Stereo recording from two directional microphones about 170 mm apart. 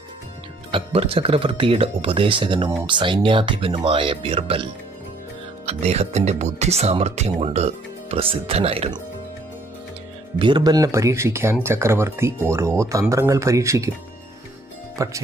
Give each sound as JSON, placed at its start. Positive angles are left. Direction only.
{"t": 0.7, "sound": "speech", "side_deg": -30}
{"t": 5.7, "sound": "speech", "side_deg": -40}
{"t": 10.4, "sound": "speech", "side_deg": -25}
{"t": 15.0, "sound": "speech", "side_deg": -20}